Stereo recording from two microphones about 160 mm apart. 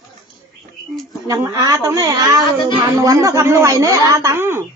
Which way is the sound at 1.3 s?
20° right (ahead or behind).